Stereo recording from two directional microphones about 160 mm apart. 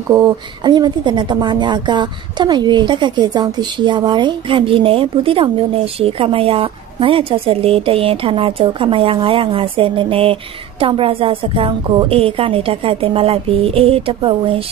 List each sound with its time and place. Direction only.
0.1 s a woman's voice: 25° right (ahead or behind)